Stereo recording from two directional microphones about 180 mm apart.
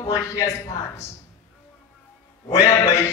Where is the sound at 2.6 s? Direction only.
15° left (ahead or behind).